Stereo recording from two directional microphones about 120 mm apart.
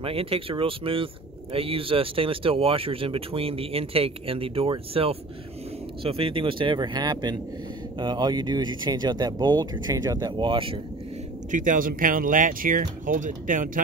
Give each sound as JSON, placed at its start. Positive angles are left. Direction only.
{"t": 0.0, "sound": "speech", "side_deg": -50}
{"t": 11.5, "sound": "speech", "side_deg": -90}